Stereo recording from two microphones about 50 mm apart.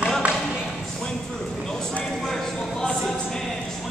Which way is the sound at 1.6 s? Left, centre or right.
Centre.